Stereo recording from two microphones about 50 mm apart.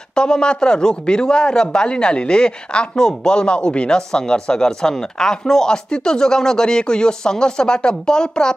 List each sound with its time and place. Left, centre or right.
0.1 s speech: centre